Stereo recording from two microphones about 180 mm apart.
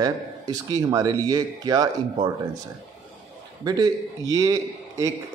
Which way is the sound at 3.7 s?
20° right (ahead or behind).